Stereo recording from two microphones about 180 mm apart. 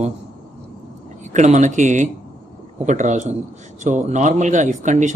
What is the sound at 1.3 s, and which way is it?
A man's voice, 40° right (ahead or behind).